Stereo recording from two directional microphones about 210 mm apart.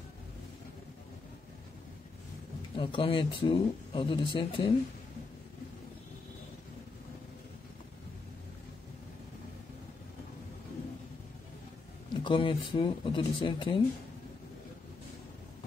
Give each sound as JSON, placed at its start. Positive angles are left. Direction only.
{"t": 2.7, "sound": "speech", "side_deg": 25}
{"t": 12.1, "sound": "speech", "side_deg": 20}